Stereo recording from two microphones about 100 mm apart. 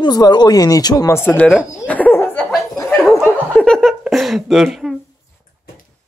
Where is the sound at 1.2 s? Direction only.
15° left (ahead or behind).